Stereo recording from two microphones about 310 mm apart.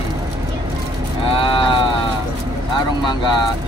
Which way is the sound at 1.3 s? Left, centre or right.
Centre.